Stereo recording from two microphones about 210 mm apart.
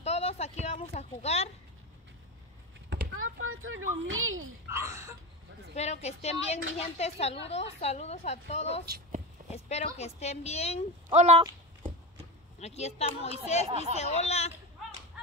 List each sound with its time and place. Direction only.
0.0 s speech: 30° left (ahead or behind)
2.9 s a child's voice: 65° right (ahead or behind)
4.6 s speech: 15° right (ahead or behind)
5.8 s a woman's voice: 30° left (ahead or behind)
8.8 s a woman's voice: 45° right (ahead or behind)
9.5 s speech: 30° left (ahead or behind)
11.1 s speech: 25° right (ahead or behind)
12.5 s speech: 30° left (ahead or behind)
13.7 s speech: 30° right (ahead or behind)
13.9 s speech: 30° left (ahead or behind)